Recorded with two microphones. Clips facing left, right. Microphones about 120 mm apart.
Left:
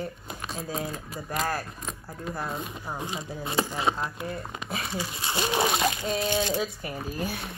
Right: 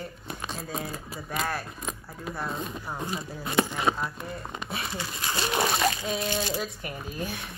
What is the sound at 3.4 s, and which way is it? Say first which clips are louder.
Speech: right 1 dB; 30° left (ahead or behind).